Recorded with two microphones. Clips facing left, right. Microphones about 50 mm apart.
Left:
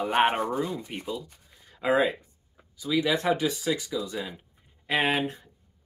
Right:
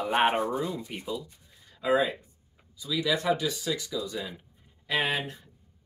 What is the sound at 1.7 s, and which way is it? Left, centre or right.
Speech, left.